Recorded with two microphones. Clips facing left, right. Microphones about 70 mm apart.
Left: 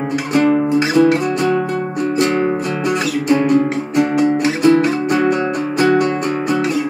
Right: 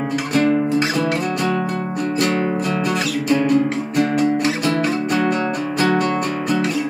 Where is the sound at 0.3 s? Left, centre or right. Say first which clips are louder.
Left 3 dB; left.